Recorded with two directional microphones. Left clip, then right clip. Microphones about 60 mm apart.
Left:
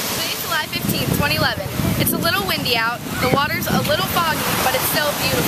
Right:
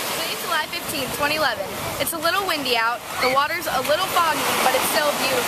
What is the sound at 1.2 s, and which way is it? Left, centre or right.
Speech, centre.